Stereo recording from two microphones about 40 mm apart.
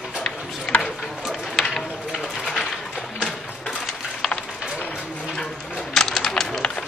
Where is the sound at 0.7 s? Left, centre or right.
Centre.